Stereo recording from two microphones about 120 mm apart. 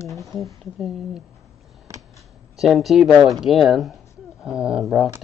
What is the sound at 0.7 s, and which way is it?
Speech, centre (ahead or behind).